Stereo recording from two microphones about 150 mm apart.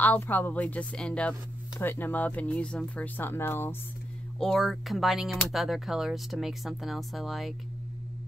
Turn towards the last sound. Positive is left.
turn(degrees=0)  # may be behind; listen again after turning